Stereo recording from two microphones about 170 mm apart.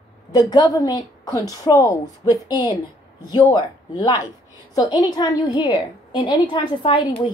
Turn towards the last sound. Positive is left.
turn(degrees=30)  # may be behind; listen again after turning